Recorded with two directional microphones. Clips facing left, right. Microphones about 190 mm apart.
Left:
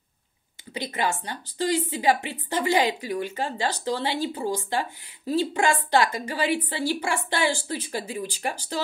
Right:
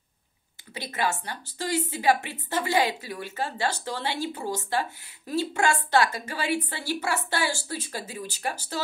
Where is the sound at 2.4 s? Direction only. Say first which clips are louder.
Left 2 dB; 15° left (ahead or behind).